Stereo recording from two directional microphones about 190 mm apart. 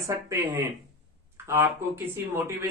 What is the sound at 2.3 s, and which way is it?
Speech, 10° right (ahead or behind).